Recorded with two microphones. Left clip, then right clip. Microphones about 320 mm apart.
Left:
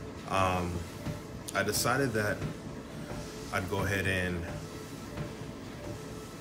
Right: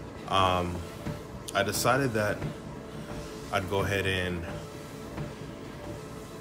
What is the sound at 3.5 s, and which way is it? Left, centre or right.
Speech, centre.